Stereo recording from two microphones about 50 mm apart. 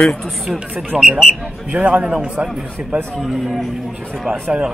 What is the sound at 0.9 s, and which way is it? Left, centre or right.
Speech, centre.